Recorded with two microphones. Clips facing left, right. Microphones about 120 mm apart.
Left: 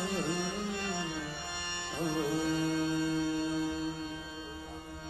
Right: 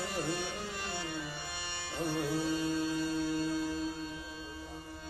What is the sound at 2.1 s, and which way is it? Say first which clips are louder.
Music: left 2 dB; 20° left (ahead or behind).